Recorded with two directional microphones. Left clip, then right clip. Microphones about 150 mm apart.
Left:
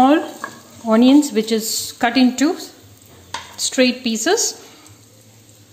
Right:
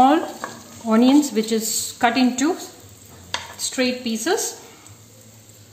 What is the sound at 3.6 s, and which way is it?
Speech, 50° left (ahead or behind).